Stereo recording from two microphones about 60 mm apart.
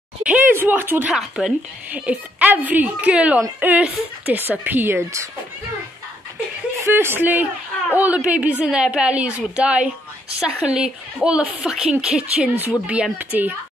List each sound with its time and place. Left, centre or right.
0.2 s a sound: right
0.5 s speech: right
1.1 s a woman's voice: centre
1.9 s a woman's voice: right
6.9 s a woman's voice: right; by 12.2 s centre
12.2 s a woman's voice: right
13.3 s a woman's voice: right